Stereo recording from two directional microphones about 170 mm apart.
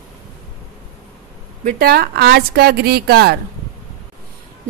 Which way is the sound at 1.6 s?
65° right (ahead or behind).